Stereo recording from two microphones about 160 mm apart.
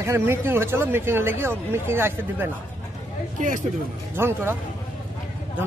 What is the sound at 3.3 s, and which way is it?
Speech, 55° right (ahead or behind).